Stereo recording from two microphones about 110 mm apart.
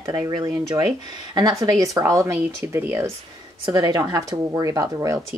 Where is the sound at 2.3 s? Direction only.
20° right (ahead or behind).